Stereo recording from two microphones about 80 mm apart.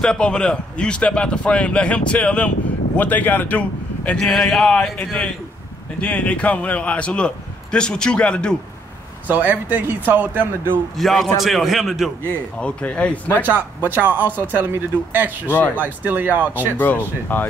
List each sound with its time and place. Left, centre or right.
0.0 s a man's voice: centre
4.3 s a man's voice: centre
9.3 s speech: right
11.0 s a man's voice: centre
12.5 s a man's voice: centre
13.4 s speech: right
16.7 s speech: left